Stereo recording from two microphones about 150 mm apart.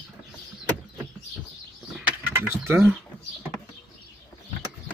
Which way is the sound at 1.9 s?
10° right (ahead or behind).